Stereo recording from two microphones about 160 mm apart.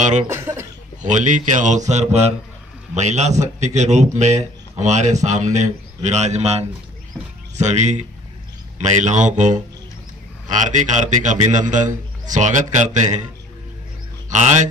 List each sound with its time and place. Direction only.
0.3 s speech: 15° right (ahead or behind)
1.0 s a man's voice: 55° right (ahead or behind)
14.3 s a man's voice: 50° right (ahead or behind)